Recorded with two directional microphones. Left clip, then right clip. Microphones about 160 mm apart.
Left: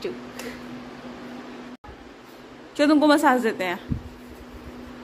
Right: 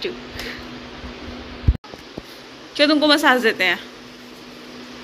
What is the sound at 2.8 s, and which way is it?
Speech, 30° left (ahead or behind).